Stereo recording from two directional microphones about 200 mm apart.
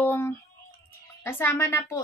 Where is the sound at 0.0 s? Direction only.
10° left (ahead or behind).